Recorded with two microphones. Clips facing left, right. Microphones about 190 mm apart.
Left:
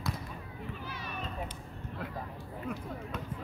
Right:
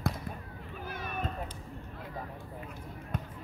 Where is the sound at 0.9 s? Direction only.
50° right (ahead or behind).